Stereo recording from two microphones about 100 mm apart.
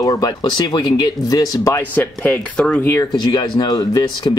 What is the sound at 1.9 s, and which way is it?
Speech, 15° left (ahead or behind).